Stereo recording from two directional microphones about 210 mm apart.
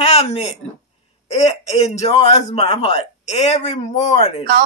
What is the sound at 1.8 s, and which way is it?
A man's voice, 30° left (ahead or behind).